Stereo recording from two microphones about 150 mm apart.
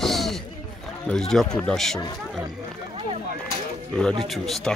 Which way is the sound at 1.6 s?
5° left (ahead or behind).